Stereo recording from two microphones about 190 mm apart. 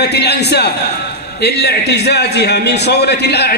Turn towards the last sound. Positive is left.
turn(degrees=60)  # may be behind; listen again after turning